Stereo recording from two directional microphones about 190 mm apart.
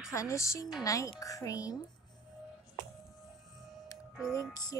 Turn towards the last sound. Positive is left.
turn(degrees=20)  # may be behind; listen again after turning